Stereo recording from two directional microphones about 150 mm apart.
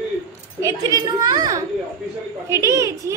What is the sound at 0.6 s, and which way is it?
A woman's voice, 20° right (ahead or behind).